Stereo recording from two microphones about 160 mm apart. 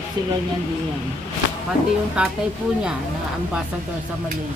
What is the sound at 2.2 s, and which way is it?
Speech, 5° right (ahead or behind).